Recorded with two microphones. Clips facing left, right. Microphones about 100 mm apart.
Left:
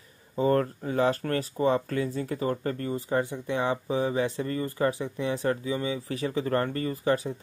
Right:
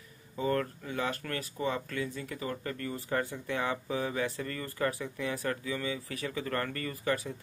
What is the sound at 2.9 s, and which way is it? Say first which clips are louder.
Speech: left 5 dB; 20° left (ahead or behind).